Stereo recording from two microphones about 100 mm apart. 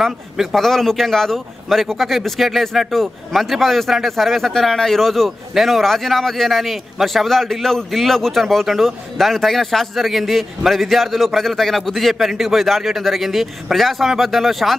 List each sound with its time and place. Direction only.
0.0 s a man's voice: centre (ahead or behind)